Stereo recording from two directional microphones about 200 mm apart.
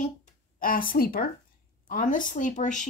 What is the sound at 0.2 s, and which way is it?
Speech, 45° left (ahead or behind).